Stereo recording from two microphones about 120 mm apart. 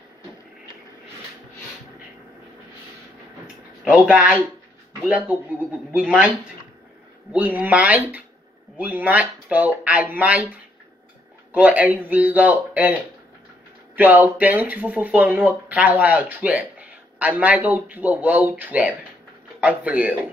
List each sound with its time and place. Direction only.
3.8 s speech: 10° right (ahead or behind)
7.3 s speech: 15° right (ahead or behind)
11.5 s speech: 10° right (ahead or behind)
13.9 s speech: 15° right (ahead or behind)